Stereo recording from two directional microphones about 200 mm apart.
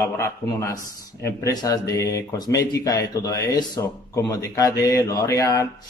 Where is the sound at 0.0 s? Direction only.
15° left (ahead or behind).